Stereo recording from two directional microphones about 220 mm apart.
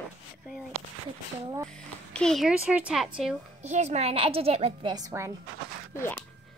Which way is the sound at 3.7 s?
30° right (ahead or behind).